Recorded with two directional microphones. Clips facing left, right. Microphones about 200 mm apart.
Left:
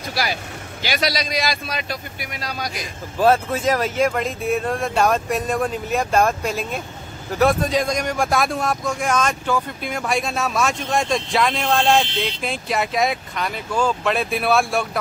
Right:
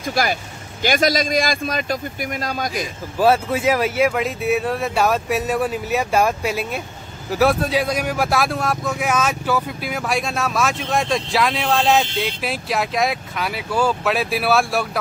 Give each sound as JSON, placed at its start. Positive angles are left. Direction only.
{"t": 0.1, "sound": "a man's voice", "side_deg": -50}
{"t": 3.2, "sound": "speech", "side_deg": -10}